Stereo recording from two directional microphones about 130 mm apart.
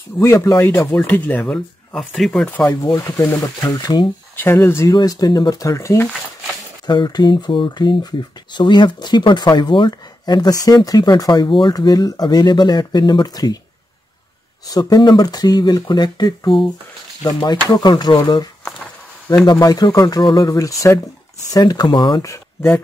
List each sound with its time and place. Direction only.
0.2 s speech: 20° left (ahead or behind); by 2.6 s 5° left (ahead or behind)
3.0 s speech: 25° left (ahead or behind)
4.4 s speech: 20° left (ahead or behind)
6.9 s speech: 35° left (ahead or behind)
14.7 s speech: 30° left (ahead or behind)
22.2 s speech: 20° left (ahead or behind)